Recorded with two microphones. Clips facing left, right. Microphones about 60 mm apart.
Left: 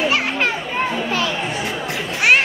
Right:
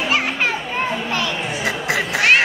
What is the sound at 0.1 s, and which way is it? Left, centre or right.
Children playing, centre.